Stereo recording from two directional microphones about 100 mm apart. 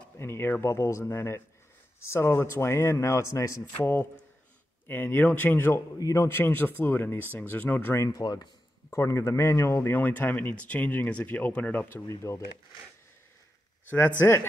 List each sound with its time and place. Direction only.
0.2 s speech: 20° left (ahead or behind)
5.9 s speech: 35° left (ahead or behind)
6.2 s speech: 25° left (ahead or behind)
8.1 s speech: 40° left (ahead or behind)
8.9 s speech: 30° left (ahead or behind)
12.1 s speech: 30° left (ahead or behind)
13.8 s a man's voice: 20° left (ahead or behind)